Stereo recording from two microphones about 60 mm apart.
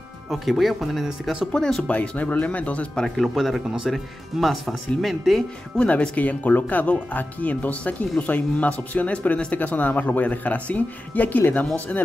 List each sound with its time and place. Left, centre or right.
0.3 s speech: centre
1.5 s speech: centre
1.9 s speech: left
3.2 s speech: centre
5.8 s speech: left